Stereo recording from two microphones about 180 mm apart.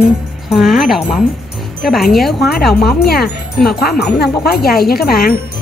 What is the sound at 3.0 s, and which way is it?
Speech, 60° left (ahead or behind).